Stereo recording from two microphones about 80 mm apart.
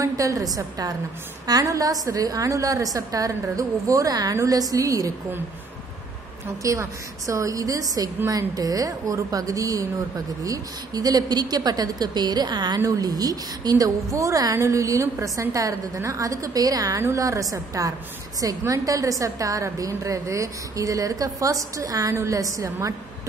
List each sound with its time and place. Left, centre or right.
0.0 s a woman's voice: right
6.6 s a woman's voice: right
12.8 s a woman's voice: right